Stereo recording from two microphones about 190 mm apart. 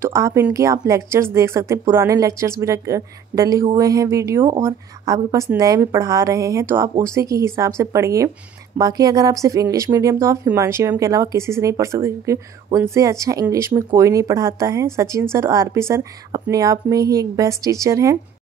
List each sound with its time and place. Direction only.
0.0 s speech: 15° right (ahead or behind)